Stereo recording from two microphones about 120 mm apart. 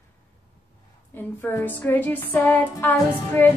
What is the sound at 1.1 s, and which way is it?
Speech, 15° left (ahead or behind).